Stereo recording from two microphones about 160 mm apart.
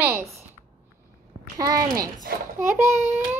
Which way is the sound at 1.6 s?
20° right (ahead or behind).